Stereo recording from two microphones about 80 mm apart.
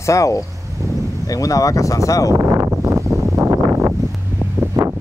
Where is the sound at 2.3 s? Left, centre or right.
Right.